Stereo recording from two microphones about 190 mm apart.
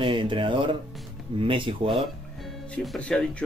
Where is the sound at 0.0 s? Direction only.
25° right (ahead or behind).